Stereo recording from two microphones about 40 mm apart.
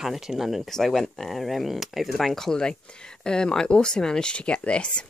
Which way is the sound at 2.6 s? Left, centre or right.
Left.